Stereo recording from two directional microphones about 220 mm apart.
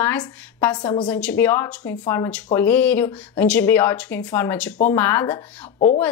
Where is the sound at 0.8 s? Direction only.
20° left (ahead or behind).